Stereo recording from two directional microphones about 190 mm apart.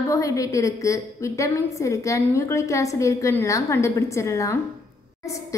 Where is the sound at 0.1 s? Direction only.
15° left (ahead or behind).